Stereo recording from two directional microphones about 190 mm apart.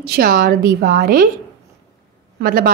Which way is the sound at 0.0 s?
55° right (ahead or behind).